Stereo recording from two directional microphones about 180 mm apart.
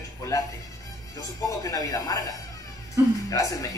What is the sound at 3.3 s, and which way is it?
Speech, 20° left (ahead or behind).